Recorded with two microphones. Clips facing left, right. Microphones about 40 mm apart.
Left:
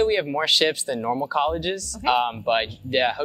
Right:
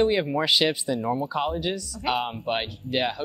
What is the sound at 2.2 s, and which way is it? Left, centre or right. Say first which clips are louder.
Speech: left 5 dB; left.